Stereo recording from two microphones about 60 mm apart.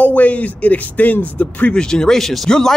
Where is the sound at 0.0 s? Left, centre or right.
Left.